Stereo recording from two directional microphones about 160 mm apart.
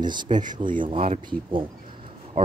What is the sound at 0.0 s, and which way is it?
Speech, 30° right (ahead or behind).